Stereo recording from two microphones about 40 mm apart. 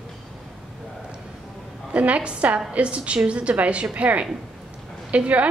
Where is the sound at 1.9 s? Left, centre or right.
Right.